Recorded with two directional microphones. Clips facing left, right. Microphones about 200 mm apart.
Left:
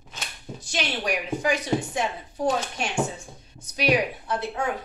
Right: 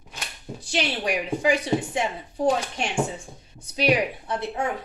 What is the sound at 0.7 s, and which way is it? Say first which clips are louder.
A woman's voice: right 2 dB; 30° right (ahead or behind).